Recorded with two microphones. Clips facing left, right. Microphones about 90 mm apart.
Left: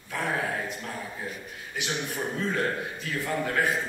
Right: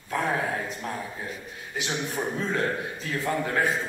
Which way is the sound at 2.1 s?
25° right (ahead or behind).